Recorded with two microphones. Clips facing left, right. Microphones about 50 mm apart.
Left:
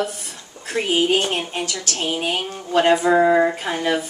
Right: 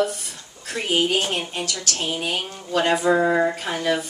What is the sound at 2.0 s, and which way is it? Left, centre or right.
A woman's voice, left.